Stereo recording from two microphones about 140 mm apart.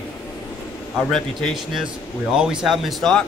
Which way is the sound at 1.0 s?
5° left (ahead or behind).